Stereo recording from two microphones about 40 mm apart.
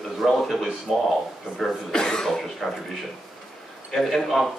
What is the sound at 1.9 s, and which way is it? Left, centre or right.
Speech, centre.